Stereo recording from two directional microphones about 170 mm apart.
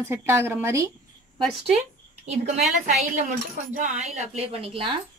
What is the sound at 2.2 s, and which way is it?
Speech, 40° right (ahead or behind).